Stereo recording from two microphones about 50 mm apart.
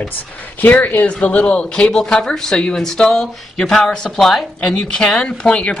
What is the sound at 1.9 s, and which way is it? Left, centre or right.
Speech, centre.